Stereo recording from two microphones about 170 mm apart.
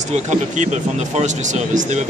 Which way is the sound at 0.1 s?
45° right (ahead or behind).